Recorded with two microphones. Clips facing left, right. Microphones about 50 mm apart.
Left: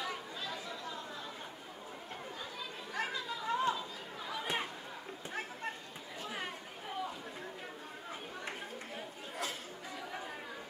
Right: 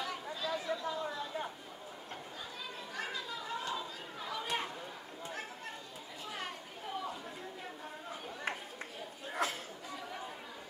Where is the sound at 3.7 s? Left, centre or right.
Centre.